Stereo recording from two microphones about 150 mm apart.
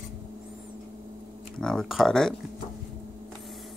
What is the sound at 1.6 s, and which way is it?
Speech, 5° left (ahead or behind).